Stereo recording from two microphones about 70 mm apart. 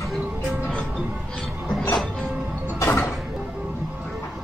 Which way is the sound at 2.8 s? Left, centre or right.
Left.